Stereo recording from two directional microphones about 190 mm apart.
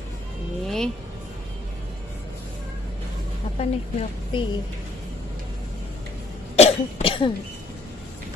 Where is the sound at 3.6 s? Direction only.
35° left (ahead or behind).